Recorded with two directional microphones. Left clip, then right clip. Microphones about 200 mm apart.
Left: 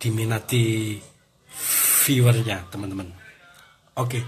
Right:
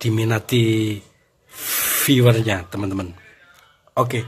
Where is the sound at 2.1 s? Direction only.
40° right (ahead or behind).